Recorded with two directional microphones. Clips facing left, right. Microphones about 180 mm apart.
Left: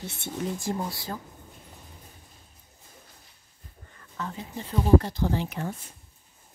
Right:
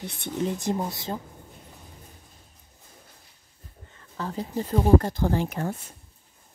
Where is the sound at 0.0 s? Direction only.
20° right (ahead or behind).